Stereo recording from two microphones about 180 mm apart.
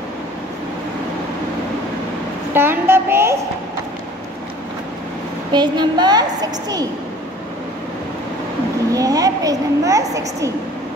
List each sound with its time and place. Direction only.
2.5 s a sound: 10° right (ahead or behind)
5.5 s a woman's voice: 25° right (ahead or behind)
8.9 s a woman's voice: 20° right (ahead or behind)